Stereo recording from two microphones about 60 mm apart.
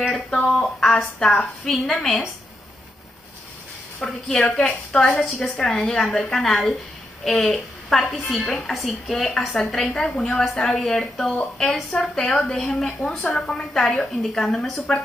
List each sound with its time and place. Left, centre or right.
0.1 s speech: centre
0.5 s a woman's voice: centre
4.0 s a woman's voice: centre